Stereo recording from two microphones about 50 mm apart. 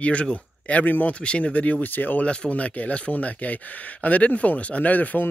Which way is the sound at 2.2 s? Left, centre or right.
Left.